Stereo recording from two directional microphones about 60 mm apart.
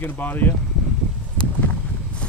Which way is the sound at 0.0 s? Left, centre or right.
Left.